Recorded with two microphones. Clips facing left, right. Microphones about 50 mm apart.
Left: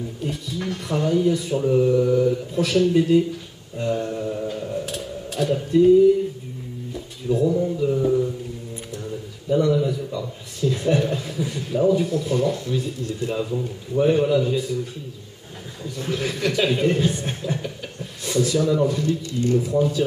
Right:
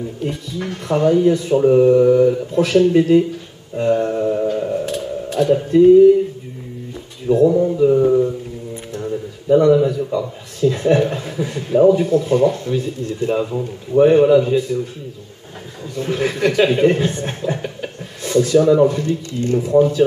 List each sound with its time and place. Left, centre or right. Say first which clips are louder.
0.6 s speech: right 7 dB; centre
1.3 s speech: right 7 dB; centre
1.6 s speech: right 8 dB; right
4.8 s a sound: right 7 dB; centre
5.5 s speech: right 5 dB; centre
7.4 s speech: right 8 dB; right
9.0 s a sound: right 11 dB; right
9.9 s speech: right 8 dB; right
15.8 s speech: right 6 dB; centre